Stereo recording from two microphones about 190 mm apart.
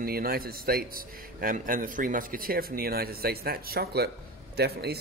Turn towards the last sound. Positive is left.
turn(degrees=-60)  # may be behind; listen again after turning